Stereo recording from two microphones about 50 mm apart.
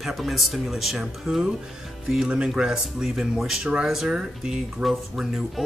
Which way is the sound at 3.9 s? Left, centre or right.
Centre.